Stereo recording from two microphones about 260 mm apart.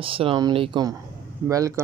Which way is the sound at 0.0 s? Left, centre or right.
Right.